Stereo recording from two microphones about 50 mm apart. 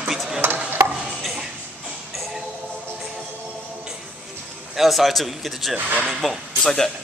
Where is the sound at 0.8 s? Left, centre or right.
Right.